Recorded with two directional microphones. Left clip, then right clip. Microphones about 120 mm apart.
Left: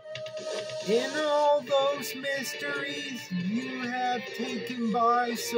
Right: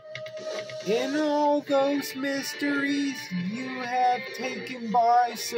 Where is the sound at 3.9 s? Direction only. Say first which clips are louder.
Right 7 dB; 30° right (ahead or behind).